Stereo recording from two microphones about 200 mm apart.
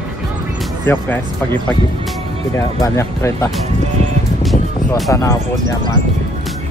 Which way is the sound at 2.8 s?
15° left (ahead or behind).